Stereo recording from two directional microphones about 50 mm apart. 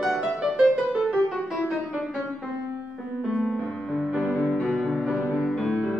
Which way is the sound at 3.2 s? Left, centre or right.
Centre.